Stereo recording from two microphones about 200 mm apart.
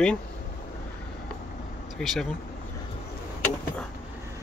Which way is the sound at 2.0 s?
Centre (ahead or behind).